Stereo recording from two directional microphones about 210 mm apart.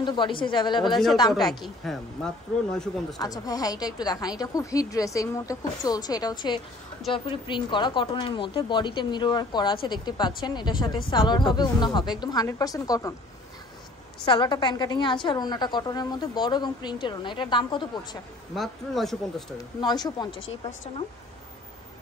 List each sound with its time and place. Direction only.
0.0 s speech: 20° left (ahead or behind)
1.5 s speech: centre (ahead or behind)
3.2 s a woman's voice: 15° left (ahead or behind)
14.2 s speech: 25° left (ahead or behind)
18.5 s speech: centre (ahead or behind)
19.8 s speech: 20° left (ahead or behind)